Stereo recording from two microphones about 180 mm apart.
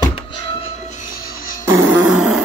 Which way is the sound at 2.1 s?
5° right (ahead or behind).